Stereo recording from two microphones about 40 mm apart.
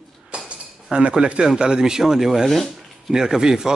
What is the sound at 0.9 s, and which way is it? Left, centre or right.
Speech, right.